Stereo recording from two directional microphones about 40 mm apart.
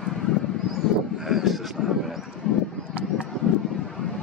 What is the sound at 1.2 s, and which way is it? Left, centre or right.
Vehicle, centre.